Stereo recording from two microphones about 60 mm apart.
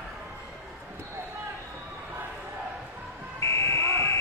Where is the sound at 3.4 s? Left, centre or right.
Left.